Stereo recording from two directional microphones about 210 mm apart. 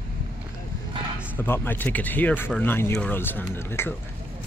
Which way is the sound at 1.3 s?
10° left (ahead or behind).